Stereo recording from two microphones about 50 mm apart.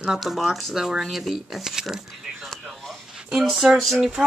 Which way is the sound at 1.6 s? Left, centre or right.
Centre.